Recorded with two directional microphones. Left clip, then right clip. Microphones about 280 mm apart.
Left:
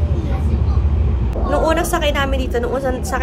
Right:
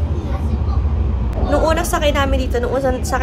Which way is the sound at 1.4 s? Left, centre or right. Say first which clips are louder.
Even; centre.